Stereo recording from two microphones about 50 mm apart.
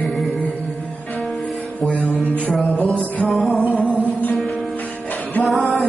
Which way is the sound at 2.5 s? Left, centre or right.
Centre.